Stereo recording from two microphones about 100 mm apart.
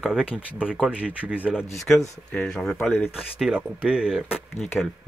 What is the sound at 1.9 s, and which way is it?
Speech, 5° left (ahead or behind).